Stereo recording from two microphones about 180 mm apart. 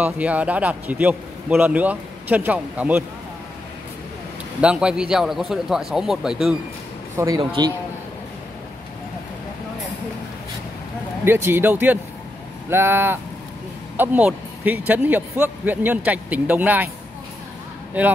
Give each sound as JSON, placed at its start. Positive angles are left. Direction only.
{"t": 0.0, "sound": "a man's voice", "side_deg": -10}
{"t": 4.6, "sound": "a man's voice", "side_deg": -5}
{"t": 7.2, "sound": "speech", "side_deg": -20}
{"t": 11.2, "sound": "a man's voice", "side_deg": -10}